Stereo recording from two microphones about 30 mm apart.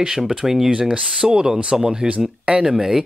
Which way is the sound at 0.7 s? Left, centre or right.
Right.